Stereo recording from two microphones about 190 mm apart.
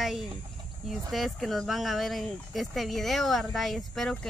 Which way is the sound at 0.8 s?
Centre (ahead or behind).